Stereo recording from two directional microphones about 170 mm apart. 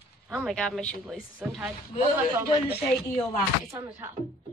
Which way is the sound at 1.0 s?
5° right (ahead or behind).